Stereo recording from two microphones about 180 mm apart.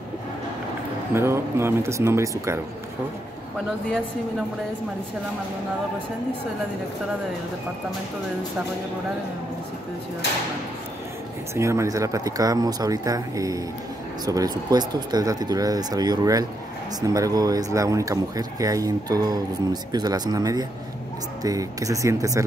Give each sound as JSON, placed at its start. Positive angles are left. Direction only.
{"t": 1.1, "sound": "speech", "side_deg": -15}
{"t": 11.5, "sound": "speech", "side_deg": -15}